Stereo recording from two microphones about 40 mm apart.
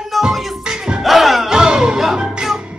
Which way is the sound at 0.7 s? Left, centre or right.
Right.